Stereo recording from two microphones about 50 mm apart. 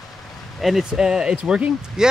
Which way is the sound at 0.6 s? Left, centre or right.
Centre.